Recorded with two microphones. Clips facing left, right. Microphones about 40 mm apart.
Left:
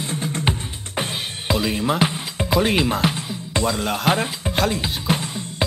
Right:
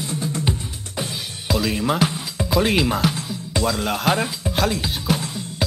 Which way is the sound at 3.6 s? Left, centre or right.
Centre.